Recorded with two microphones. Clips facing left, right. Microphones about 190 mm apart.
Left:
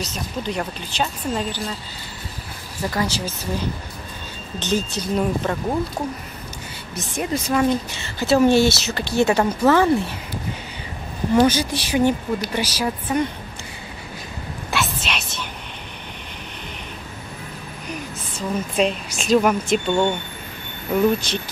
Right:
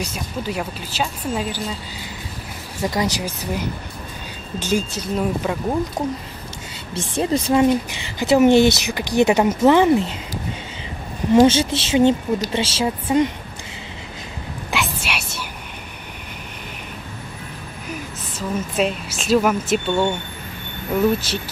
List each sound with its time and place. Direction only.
0.0 s a woman's voice: 10° right (ahead or behind)
2.9 s a woman's voice: 15° right (ahead or behind)
6.9 s speech: 30° right (ahead or behind)
7.6 s a woman's voice: 15° right (ahead or behind)
11.4 s a woman's voice: 25° right (ahead or behind)
14.7 s a sound: 10° right (ahead or behind)
18.8 s speech: 5° right (ahead or behind)